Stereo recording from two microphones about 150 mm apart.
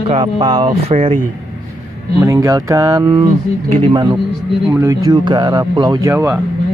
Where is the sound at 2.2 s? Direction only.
20° right (ahead or behind).